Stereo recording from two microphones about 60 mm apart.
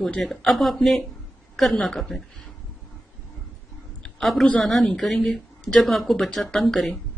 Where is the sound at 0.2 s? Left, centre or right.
Centre.